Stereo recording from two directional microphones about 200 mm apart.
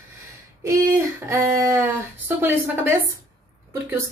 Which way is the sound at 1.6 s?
15° right (ahead or behind).